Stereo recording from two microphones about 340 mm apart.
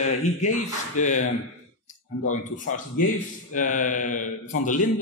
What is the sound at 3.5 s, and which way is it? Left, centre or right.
Speech, left.